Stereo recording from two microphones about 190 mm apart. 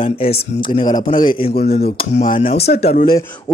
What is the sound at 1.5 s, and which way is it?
Speech, 55° left (ahead or behind).